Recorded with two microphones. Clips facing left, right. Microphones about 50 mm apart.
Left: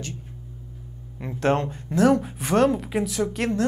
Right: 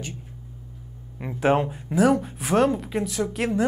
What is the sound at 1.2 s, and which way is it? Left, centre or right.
Speech, centre.